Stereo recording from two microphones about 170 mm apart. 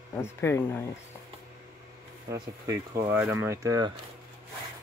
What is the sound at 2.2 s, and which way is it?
Speech, 20° right (ahead or behind).